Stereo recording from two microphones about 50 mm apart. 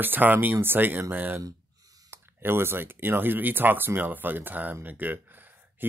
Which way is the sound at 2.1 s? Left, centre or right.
Right.